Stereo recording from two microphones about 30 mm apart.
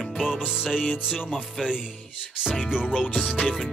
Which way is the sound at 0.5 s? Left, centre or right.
Right.